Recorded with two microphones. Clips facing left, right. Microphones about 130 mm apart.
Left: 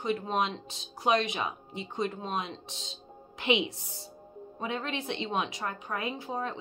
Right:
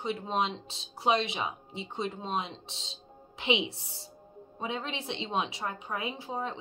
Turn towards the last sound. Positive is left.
turn(degrees=-20)  # may be behind; listen again after turning